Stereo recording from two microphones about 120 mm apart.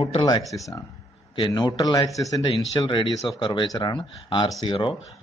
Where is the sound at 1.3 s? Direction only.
40° left (ahead or behind).